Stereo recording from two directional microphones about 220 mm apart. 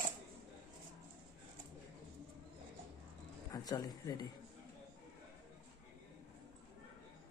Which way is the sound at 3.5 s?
15° left (ahead or behind).